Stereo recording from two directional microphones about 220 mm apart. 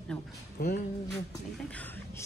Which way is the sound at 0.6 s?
45° left (ahead or behind).